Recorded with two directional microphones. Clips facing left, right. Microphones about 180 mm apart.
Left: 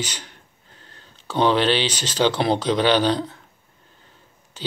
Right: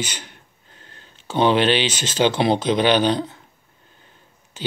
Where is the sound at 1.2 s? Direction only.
20° right (ahead or behind).